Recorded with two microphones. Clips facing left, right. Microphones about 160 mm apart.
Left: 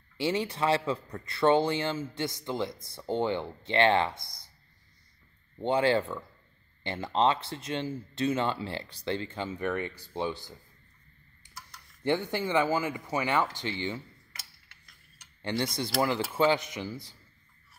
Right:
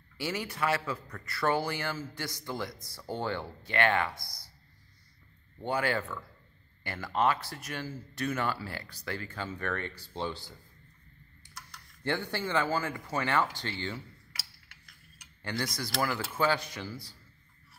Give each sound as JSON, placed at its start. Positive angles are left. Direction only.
{"t": 0.2, "sound": "speech", "side_deg": 25}
{"t": 5.6, "sound": "speech", "side_deg": 25}
{"t": 12.0, "sound": "speech", "side_deg": 20}
{"t": 13.9, "sound": "cutlery", "side_deg": 0}
{"t": 15.4, "sound": "speech", "side_deg": 25}